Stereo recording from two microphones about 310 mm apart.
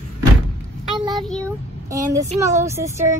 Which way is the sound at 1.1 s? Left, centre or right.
Centre.